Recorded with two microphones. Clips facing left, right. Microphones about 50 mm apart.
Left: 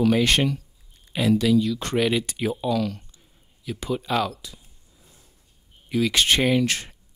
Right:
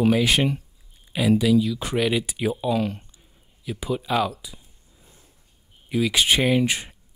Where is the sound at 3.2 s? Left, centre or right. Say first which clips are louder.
Right 1 dB; centre.